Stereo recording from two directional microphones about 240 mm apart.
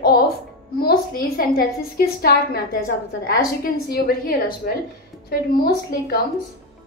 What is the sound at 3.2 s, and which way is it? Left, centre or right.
A woman's voice, left.